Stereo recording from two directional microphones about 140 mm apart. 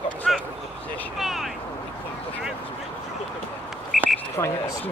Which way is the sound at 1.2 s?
Centre (ahead or behind).